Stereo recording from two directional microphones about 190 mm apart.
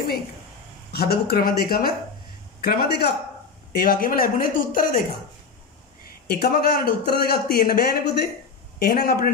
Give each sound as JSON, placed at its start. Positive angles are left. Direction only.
{"t": 0.9, "sound": "speech", "side_deg": 55}
{"t": 6.2, "sound": "speech", "side_deg": 55}